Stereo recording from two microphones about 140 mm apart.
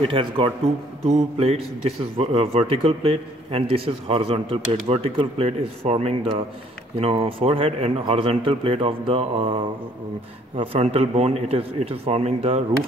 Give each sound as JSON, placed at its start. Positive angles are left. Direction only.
{"t": 0.0, "sound": "speech", "side_deg": -40}
{"t": 1.0, "sound": "speech", "side_deg": -50}
{"t": 10.6, "sound": "speech", "side_deg": -45}